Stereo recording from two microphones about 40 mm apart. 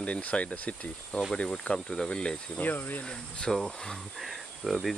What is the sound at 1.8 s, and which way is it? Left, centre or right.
Speech, left.